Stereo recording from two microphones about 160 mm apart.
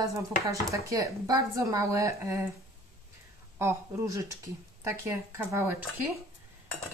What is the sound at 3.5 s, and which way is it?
A woman's voice, 20° right (ahead or behind).